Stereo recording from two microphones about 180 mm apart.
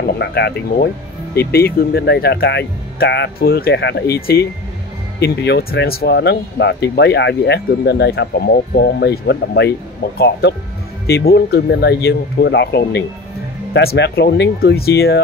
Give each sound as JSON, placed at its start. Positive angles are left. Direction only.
{"t": 0.0, "sound": "speech", "side_deg": 65}